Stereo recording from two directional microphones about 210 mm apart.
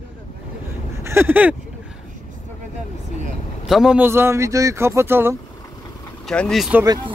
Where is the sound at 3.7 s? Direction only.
5° right (ahead or behind).